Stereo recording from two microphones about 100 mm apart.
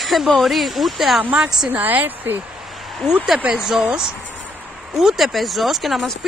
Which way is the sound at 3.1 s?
10° right (ahead or behind).